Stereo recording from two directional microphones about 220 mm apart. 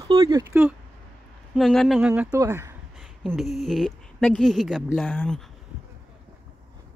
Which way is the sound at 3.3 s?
Centre (ahead or behind).